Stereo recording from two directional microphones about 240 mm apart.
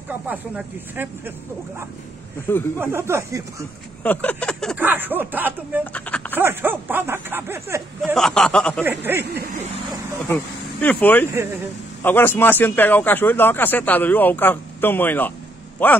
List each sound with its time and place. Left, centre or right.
0.1 s speech: centre
2.8 s speech: centre
4.0 s a sound: centre
4.8 s speech: centre
5.9 s a sound: centre
6.4 s speech: centre
8.0 s a sound: centre
8.8 s speech: centre
9.2 s speech: right
10.2 s speech: centre